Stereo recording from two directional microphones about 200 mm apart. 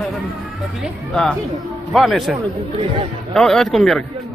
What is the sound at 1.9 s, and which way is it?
Speech, centre (ahead or behind).